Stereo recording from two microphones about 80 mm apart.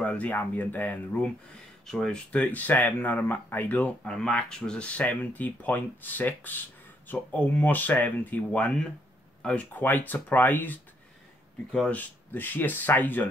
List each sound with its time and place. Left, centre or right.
0.0 s speech: centre
1.9 s speech: centre; by 10.8 s left
11.9 s speech: left